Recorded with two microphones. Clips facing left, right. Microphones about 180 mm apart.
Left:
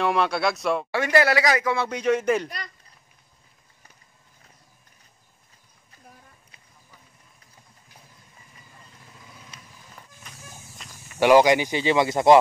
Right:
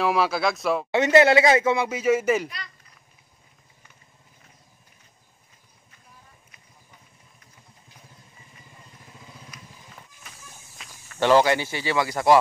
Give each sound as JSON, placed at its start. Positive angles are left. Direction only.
{"t": 0.0, "sound": "speech", "side_deg": 0}
{"t": 0.9, "sound": "speech", "side_deg": -25}
{"t": 1.9, "sound": "speech", "side_deg": -5}
{"t": 11.1, "sound": "speech", "side_deg": 15}